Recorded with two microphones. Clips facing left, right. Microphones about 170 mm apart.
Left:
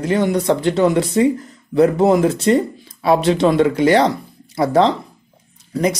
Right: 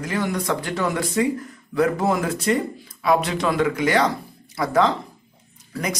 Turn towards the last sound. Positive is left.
turn(degrees=30)  # may be behind; listen again after turning